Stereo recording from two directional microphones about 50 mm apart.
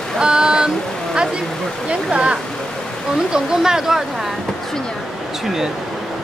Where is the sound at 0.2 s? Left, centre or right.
Centre.